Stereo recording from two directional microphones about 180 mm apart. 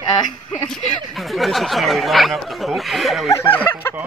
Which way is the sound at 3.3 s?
10° left (ahead or behind).